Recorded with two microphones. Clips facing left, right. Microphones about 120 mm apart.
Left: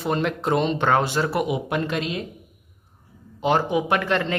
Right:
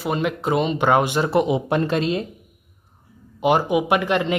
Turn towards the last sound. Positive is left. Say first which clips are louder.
# right 3 dB
turn(degrees=-15)  # may be behind; listen again after turning